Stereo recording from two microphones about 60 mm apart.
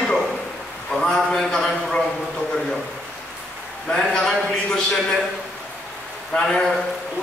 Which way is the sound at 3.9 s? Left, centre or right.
Centre.